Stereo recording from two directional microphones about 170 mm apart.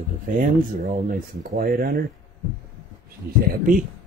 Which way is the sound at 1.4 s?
60° right (ahead or behind).